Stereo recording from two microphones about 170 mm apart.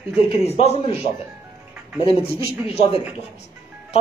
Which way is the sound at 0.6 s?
40° left (ahead or behind).